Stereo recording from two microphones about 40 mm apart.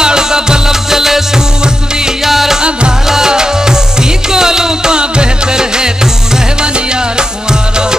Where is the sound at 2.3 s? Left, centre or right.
Centre.